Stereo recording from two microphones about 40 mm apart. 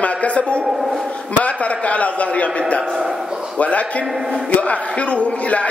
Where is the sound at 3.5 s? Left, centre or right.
Left.